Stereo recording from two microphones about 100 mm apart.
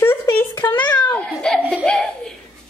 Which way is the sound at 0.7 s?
15° left (ahead or behind).